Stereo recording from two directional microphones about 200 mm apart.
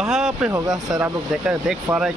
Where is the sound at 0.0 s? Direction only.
Centre (ahead or behind).